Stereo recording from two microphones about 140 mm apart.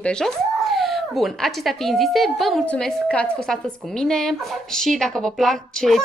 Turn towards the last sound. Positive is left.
turn(degrees=0)  # may be behind; listen again after turning